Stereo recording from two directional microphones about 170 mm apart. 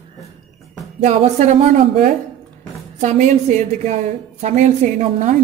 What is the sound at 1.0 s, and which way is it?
Speech, 45° right (ahead or behind).